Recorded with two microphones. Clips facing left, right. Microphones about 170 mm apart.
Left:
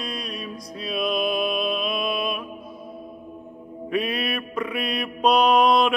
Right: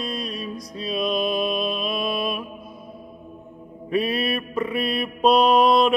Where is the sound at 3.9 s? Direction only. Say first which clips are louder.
Right 3 dB; centre (ahead or behind).